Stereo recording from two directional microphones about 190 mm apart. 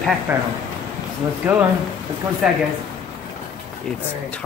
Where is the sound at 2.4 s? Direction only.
5° right (ahead or behind).